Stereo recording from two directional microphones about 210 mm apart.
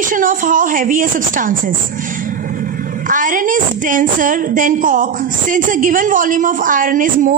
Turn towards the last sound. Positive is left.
turn(degrees=-40)  # may be behind; listen again after turning